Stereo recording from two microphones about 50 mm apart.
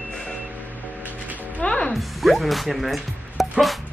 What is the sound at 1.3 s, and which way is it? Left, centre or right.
Music, right.